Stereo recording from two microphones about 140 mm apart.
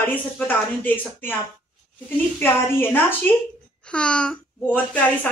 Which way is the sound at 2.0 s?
15° left (ahead or behind).